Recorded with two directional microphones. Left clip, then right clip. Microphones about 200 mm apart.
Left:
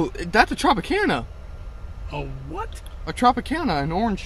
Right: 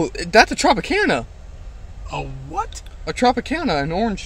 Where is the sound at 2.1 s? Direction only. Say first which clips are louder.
Right 6 dB; 20° right (ahead or behind).